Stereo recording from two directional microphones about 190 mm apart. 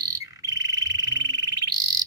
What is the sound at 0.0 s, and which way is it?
Frog, 15° right (ahead or behind).